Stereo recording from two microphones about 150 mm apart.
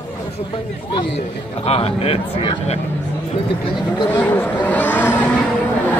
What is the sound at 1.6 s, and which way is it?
A man's voice, 40° left (ahead or behind).